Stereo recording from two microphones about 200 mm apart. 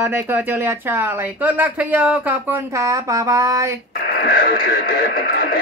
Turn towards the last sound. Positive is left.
turn(degrees=50)  # may be behind; listen again after turning